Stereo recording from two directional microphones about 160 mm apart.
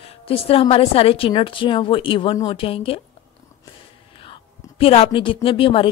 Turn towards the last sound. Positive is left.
turn(degrees=35)  # may be behind; listen again after turning